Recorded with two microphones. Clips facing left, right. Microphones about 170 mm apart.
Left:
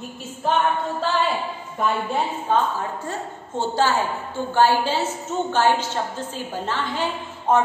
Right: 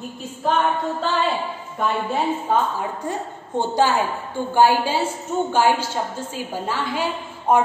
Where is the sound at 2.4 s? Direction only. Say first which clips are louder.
Even; 15° right (ahead or behind).